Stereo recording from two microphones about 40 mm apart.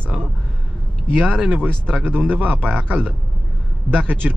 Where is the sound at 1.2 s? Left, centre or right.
Right.